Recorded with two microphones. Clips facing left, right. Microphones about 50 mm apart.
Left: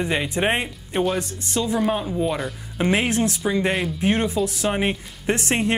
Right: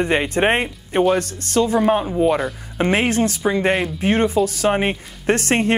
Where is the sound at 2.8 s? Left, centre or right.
Right.